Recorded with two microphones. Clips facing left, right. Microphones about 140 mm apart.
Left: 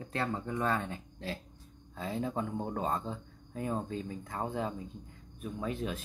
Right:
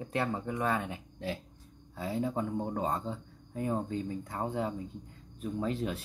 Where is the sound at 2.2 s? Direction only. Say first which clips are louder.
Right 2 dB; 20° right (ahead or behind).